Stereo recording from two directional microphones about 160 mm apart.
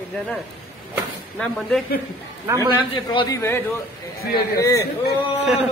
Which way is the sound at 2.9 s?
30° left (ahead or behind).